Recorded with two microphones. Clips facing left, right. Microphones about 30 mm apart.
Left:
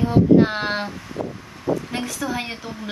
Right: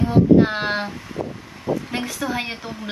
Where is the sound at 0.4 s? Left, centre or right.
Centre.